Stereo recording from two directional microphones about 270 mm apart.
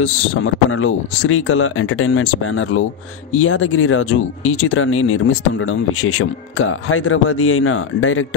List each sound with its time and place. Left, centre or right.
0.0 s speech: left